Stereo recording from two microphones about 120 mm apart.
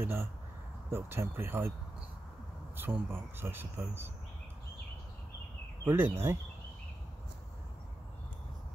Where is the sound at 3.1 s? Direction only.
20° right (ahead or behind).